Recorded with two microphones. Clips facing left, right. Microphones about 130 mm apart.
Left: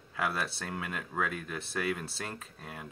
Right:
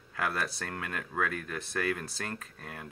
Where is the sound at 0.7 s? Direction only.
15° left (ahead or behind).